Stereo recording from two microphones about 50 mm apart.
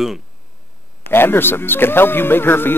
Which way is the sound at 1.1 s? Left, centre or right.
Left.